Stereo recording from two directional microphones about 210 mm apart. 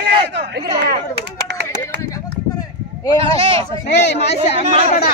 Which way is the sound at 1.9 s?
55° right (ahead or behind).